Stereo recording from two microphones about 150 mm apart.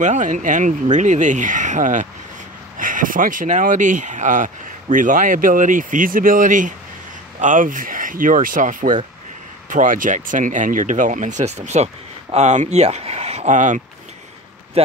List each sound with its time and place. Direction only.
0.0 s speech: 55° right (ahead or behind)